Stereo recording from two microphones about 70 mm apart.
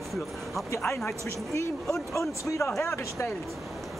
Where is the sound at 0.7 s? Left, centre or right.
Left.